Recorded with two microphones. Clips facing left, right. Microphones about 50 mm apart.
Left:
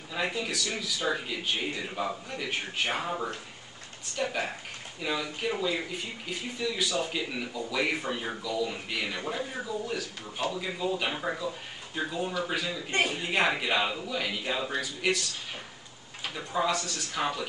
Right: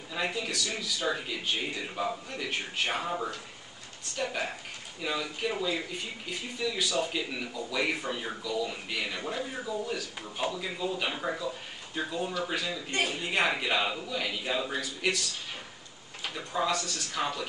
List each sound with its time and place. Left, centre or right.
0.1 s speech: centre
12.9 s a man's voice: left
13.2 s speech: centre
16.3 s speech: centre